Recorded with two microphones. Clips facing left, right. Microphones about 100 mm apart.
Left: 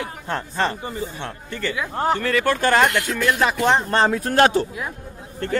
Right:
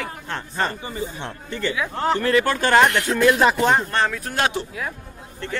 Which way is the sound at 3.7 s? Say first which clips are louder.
Left 2 dB; 30° left (ahead or behind).